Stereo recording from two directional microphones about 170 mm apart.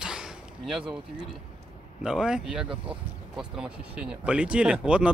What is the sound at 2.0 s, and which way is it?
Speech, 5° right (ahead or behind).